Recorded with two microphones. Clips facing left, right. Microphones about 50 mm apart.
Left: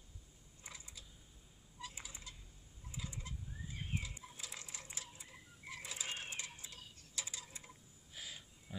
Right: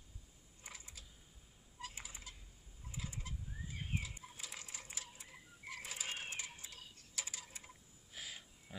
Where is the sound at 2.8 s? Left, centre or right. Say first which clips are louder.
Even; right.